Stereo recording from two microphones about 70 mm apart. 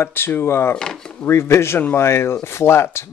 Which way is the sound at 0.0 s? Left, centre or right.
Left.